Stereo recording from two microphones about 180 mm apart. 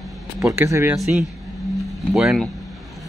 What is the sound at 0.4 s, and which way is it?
Speech, 20° right (ahead or behind).